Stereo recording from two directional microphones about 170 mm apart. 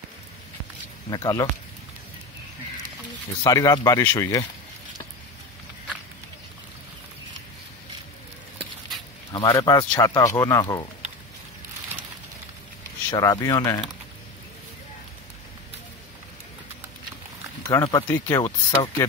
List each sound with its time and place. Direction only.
1.1 s speech: 20° left (ahead or behind)
3.4 s speech: 20° left (ahead or behind)
9.3 s speech: 25° left (ahead or behind)
13.1 s speech: 20° left (ahead or behind)
17.6 s speech: 20° left (ahead or behind)